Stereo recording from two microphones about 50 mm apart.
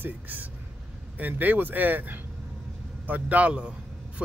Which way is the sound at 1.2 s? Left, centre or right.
Right.